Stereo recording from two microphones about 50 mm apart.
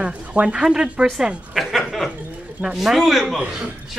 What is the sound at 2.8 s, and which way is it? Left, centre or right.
Speech, centre.